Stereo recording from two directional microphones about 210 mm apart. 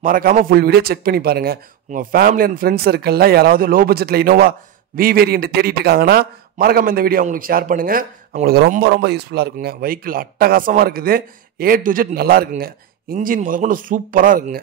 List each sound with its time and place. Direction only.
0.0 s a man's voice: 40° right (ahead or behind)